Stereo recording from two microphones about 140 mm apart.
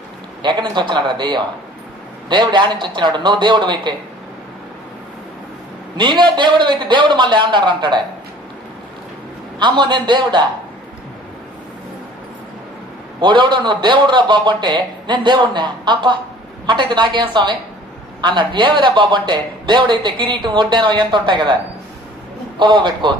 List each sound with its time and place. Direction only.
0.4 s speech: 35° right (ahead or behind)
5.9 s speech: 35° right (ahead or behind)
9.6 s speech: 35° right (ahead or behind)
13.2 s speech: 35° right (ahead or behind)
22.6 s speech: 35° right (ahead or behind)